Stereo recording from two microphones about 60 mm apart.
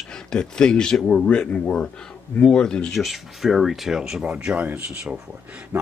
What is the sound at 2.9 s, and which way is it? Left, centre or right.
Speech, centre.